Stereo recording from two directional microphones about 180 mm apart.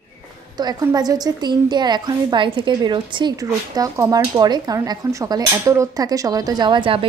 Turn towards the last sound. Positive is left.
turn(degrees=-30)  # may be behind; listen again after turning